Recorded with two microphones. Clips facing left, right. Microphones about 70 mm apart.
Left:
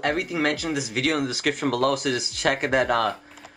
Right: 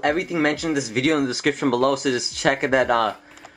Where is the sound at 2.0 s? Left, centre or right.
Centre.